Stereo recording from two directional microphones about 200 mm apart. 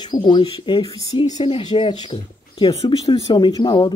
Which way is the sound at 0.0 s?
20° left (ahead or behind).